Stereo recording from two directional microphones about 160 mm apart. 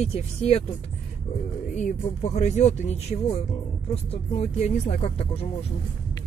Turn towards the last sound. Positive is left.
turn(degrees=40)  # may be behind; listen again after turning